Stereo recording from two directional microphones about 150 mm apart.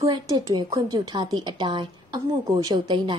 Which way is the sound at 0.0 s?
25° right (ahead or behind).